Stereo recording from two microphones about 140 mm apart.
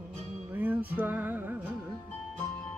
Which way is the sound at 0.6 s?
15° right (ahead or behind).